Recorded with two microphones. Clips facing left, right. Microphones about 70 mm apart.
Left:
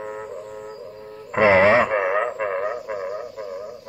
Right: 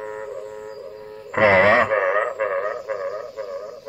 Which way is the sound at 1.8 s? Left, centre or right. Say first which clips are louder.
Right 1 dB; right.